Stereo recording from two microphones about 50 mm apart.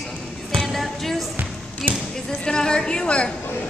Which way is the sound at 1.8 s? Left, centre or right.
Centre.